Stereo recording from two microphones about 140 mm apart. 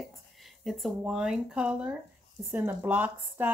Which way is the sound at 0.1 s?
Centre (ahead or behind).